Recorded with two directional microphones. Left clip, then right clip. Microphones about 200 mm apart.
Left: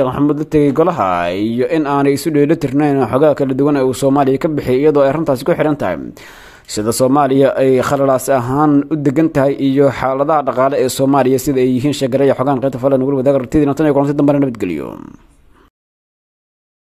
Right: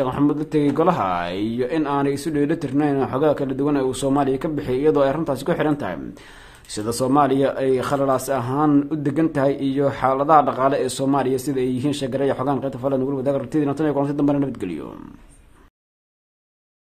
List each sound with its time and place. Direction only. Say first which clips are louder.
0.0 s speech: left 6 dB; 25° left (ahead or behind)